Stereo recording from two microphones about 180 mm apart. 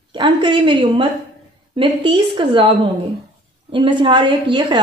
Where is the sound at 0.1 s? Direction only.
25° right (ahead or behind).